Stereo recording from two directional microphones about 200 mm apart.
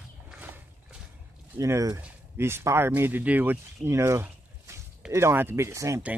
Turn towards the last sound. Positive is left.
turn(degrees=-10)  # may be behind; listen again after turning